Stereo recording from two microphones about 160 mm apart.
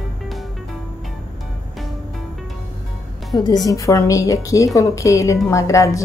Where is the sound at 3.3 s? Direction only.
25° left (ahead or behind).